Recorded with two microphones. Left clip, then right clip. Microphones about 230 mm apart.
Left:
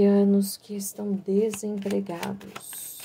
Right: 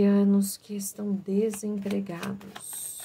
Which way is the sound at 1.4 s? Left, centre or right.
Left.